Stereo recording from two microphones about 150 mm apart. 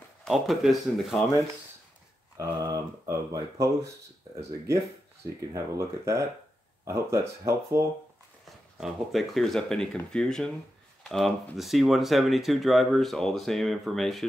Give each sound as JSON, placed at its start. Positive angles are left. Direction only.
{"t": 0.2, "sound": "speech", "side_deg": 0}
{"t": 2.3, "sound": "speech", "side_deg": -20}
{"t": 5.2, "sound": "speech", "side_deg": -20}
{"t": 8.5, "sound": "speech", "side_deg": 0}